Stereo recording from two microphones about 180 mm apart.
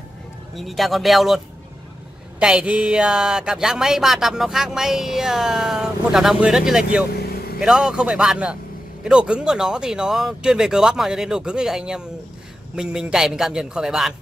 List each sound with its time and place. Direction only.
0.6 s speech: centre (ahead or behind)
2.4 s speech: 5° right (ahead or behind)